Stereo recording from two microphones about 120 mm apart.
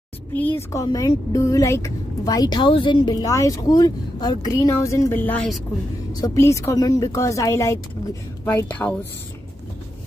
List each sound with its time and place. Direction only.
0.3 s speech: 15° left (ahead or behind); by 3.3 s 40° left (ahead or behind)
3.3 s speech: 25° left (ahead or behind)
6.2 s speech: 25° left (ahead or behind)